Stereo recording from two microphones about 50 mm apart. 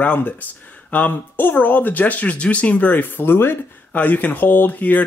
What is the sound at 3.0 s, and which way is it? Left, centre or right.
Speech, left.